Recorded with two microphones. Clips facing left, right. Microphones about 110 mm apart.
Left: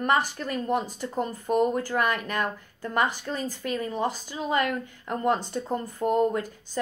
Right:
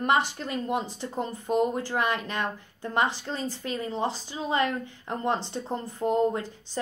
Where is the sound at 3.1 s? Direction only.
25° right (ahead or behind).